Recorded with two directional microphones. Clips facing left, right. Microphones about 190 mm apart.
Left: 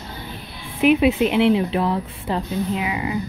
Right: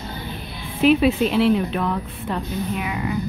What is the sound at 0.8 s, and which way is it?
A woman's voice, 15° left (ahead or behind).